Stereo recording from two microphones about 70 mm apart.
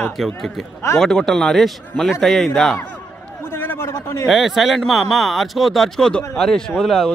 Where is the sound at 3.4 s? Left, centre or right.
Left.